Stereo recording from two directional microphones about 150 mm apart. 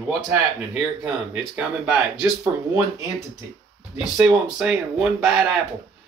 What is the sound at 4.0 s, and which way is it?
Speech, 5° right (ahead or behind).